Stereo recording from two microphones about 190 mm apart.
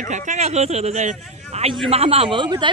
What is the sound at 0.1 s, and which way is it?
A man's voice, 40° right (ahead or behind).